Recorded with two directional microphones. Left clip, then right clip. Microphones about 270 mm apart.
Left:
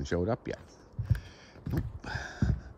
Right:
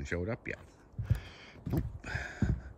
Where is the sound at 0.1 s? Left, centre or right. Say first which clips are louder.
Left 6 dB; right.